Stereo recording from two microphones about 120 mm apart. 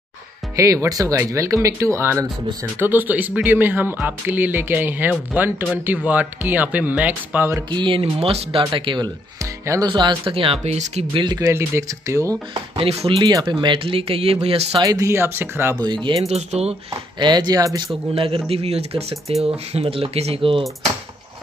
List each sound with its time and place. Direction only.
0.6 s speech: 30° right (ahead or behind)
7.5 s speech: 40° right (ahead or behind)
8.0 s speech: 55° right (ahead or behind)
11.1 s speech: 30° right (ahead or behind)
12.7 s speech: 50° right (ahead or behind)
13.2 s speech: 35° right (ahead or behind); by 14.8 s 55° right (ahead or behind)
14.8 s speech: 30° right (ahead or behind)
15.8 s speech: 40° right (ahead or behind)
16.3 s speech: 60° right (ahead or behind)
17.2 s speech: 35° right (ahead or behind)
18.1 s speech: 50° right (ahead or behind)